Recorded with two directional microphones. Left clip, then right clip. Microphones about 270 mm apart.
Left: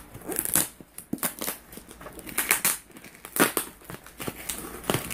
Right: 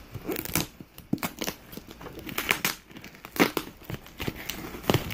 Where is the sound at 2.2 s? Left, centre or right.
Right.